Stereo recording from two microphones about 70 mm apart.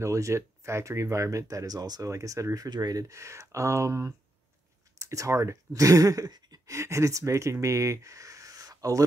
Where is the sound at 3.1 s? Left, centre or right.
Right.